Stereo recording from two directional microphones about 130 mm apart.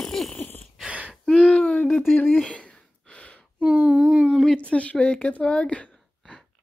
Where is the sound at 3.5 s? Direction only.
10° right (ahead or behind).